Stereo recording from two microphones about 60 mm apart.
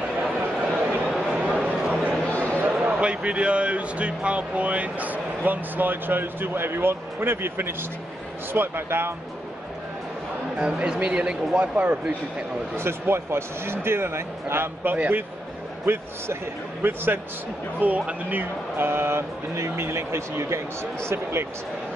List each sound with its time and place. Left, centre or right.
0.4 s a sound: right
2.0 s a sound: left
2.6 s a man's voice: right
10.6 s a man's voice: right
12.7 s speech: right
14.8 s speech: right